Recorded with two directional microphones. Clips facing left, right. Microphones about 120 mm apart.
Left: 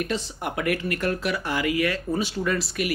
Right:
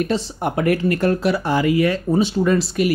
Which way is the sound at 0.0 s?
30° right (ahead or behind).